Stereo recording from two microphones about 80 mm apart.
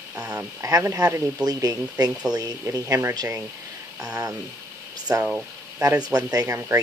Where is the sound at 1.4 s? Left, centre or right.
Right.